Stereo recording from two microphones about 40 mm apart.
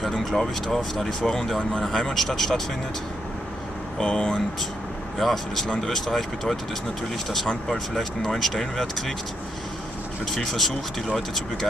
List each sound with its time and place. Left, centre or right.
0.0 s speech: centre
4.0 s speech: centre
5.2 s speech: centre
7.9 s speech: centre
10.2 s speech: centre